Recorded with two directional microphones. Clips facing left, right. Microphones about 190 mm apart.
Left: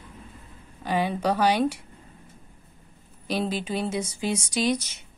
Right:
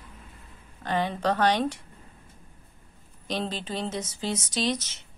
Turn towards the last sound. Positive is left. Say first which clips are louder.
# left 3 dB
turn(degrees=10)  # may be behind; listen again after turning